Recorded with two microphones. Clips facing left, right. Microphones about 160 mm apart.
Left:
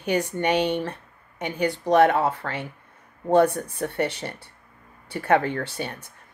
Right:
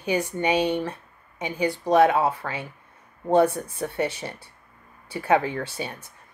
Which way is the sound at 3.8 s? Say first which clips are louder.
Left 1 dB; 60° left (ahead or behind).